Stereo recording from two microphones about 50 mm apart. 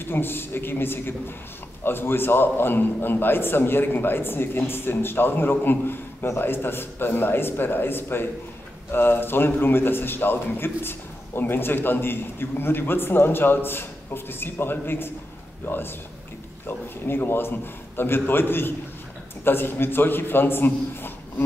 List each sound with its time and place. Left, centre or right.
0.0 s a man's voice: left